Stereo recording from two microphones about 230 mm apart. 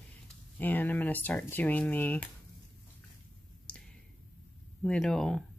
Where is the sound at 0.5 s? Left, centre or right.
Centre.